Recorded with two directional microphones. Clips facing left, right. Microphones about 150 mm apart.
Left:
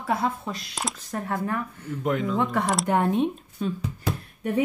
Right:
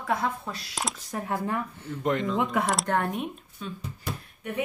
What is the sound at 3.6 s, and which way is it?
Speech, 40° left (ahead or behind).